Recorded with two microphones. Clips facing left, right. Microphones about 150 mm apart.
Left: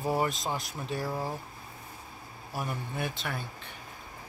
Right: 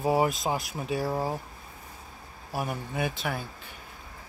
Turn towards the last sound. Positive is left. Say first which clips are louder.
# right 4 dB
turn(degrees=-5)  # may be behind; listen again after turning